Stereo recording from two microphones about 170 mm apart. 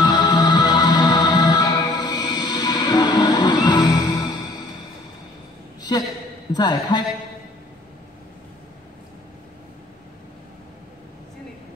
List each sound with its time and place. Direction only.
0.0 s music: 25° left (ahead or behind)
5.8 s a sound: 25° left (ahead or behind)
6.5 s a man's voice: 25° left (ahead or behind)